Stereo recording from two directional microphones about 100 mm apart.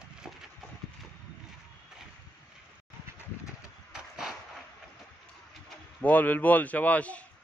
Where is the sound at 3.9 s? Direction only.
5° right (ahead or behind).